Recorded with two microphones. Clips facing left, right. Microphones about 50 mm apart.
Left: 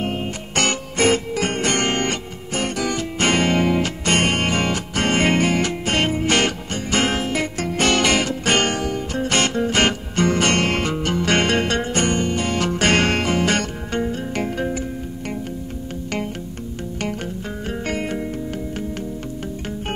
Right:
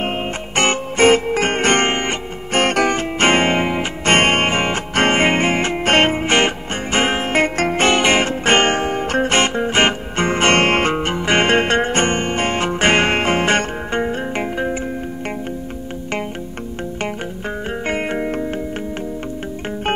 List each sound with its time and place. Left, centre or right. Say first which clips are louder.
0.0 s music: right 3 dB; right
1.9 s music: right 1 dB; right
2.5 s music: right 8 dB; right
2.9 s music: right 4 dB; right
4.0 s music: right 10 dB; right
6.2 s music: right 3 dB; right
7.2 s music: right 6 dB; right
7.7 s music: right 1 dB; right
17.8 s music: right 4 dB; right